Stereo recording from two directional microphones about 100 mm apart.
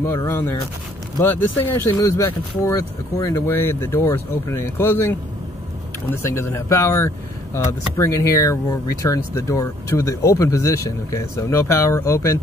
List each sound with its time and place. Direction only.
0.0 s speech: 25° left (ahead or behind)
2.0 s speech: 30° left (ahead or behind)